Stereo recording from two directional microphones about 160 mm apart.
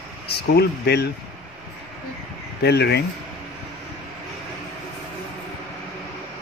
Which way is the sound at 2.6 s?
90° left.